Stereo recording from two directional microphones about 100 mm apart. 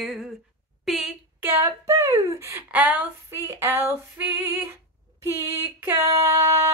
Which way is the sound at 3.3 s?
25° right (ahead or behind).